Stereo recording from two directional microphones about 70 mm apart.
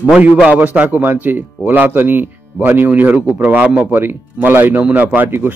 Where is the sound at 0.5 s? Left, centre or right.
Right.